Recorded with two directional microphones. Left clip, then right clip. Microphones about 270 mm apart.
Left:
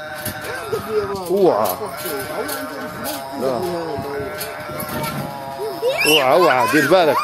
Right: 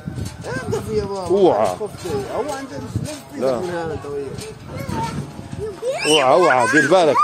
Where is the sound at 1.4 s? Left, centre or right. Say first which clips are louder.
Even; centre.